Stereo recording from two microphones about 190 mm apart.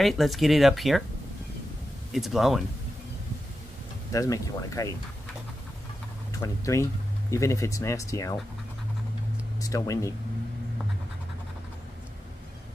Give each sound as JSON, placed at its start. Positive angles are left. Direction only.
{"t": 0.0, "sound": "speech", "side_deg": 0}
{"t": 2.1, "sound": "speech", "side_deg": 0}
{"t": 4.1, "sound": "speech", "side_deg": 15}
{"t": 6.4, "sound": "speech", "side_deg": 15}
{"t": 9.6, "sound": "speech", "side_deg": 15}